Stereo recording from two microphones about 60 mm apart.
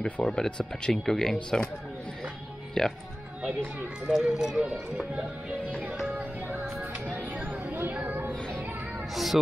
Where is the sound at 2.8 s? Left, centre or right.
Centre.